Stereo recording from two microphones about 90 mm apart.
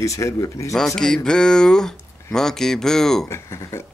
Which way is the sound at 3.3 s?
30° left (ahead or behind).